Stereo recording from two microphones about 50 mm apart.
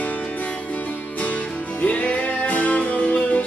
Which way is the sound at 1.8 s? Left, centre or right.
Left.